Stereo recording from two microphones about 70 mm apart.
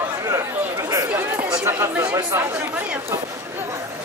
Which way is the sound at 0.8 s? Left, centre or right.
Right.